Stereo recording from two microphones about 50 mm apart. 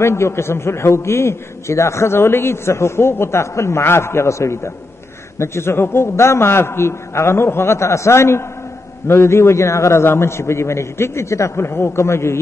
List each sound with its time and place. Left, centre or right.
0.0 s a man's voice: left